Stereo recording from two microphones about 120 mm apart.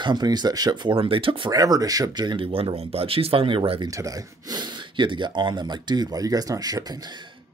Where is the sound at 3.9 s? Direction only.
30° right (ahead or behind).